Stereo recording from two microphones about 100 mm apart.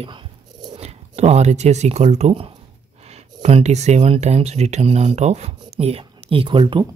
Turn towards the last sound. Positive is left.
turn(degrees=-55)  # may be behind; listen again after turning